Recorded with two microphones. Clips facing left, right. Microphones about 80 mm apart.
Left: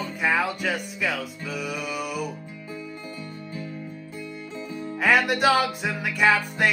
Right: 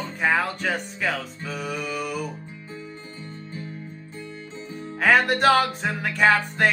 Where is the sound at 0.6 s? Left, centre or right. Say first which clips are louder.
Right 1 dB; right.